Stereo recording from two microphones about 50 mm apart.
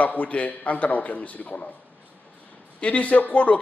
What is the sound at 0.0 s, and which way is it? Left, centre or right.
Speech, left.